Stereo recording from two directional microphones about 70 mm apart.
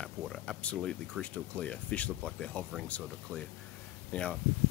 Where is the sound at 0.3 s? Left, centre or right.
Centre.